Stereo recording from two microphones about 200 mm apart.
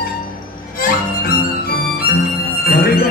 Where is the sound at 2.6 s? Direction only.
50° left (ahead or behind).